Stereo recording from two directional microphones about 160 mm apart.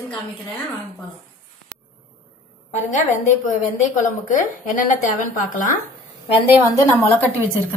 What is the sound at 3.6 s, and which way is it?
A woman's voice, 55° left (ahead or behind).